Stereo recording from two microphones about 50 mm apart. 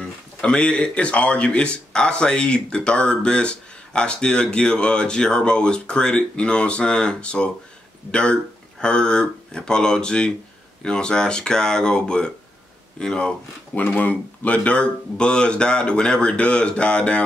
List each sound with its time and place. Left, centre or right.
0.0 s speech: centre
13.7 s speech: left